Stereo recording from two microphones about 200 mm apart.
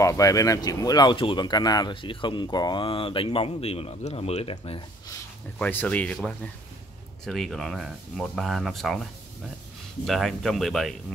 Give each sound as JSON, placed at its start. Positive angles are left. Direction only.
{"t": 0.0, "sound": "speech", "side_deg": 15}
{"t": 5.6, "sound": "speech", "side_deg": 10}
{"t": 10.0, "sound": "speech", "side_deg": 0}